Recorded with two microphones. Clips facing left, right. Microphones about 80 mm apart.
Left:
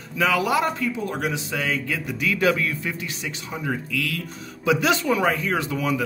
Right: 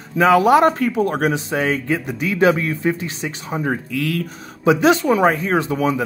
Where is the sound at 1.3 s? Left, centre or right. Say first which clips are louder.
Right 6 dB; right.